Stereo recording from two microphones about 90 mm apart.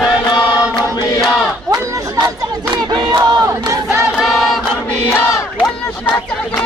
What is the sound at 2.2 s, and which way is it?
Battle cry, 55° right (ahead or behind).